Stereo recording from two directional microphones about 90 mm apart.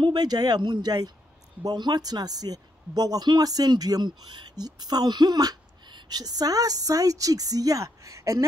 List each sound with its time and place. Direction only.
0.0 s speech: 50° right (ahead or behind)